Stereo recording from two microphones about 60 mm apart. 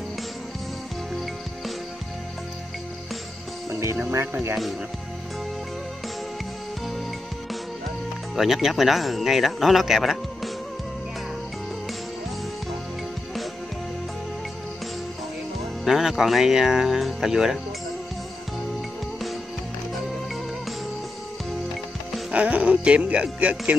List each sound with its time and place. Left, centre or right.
3.8 s speech: right
4.3 s speech: right
8.4 s speech: centre
15.8 s speech: centre
22.3 s speech: right